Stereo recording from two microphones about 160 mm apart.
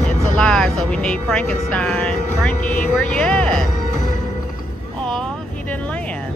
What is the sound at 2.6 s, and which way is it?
Speech, 55° left (ahead or behind).